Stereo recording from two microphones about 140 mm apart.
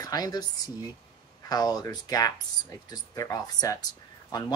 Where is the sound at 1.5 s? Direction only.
30° left (ahead or behind).